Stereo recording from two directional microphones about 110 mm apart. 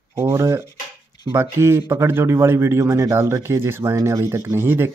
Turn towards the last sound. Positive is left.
turn(degrees=-20)  # may be behind; listen again after turning